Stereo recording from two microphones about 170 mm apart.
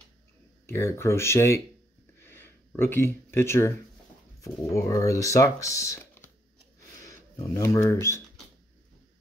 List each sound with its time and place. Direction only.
0.7 s speech: 15° left (ahead or behind)